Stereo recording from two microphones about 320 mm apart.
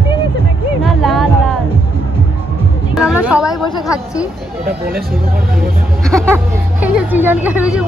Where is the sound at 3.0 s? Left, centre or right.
Centre.